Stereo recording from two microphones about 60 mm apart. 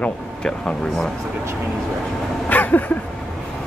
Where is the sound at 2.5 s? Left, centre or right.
Left.